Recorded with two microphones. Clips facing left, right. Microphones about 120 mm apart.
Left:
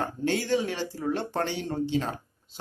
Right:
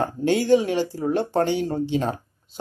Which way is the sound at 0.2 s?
15° right (ahead or behind).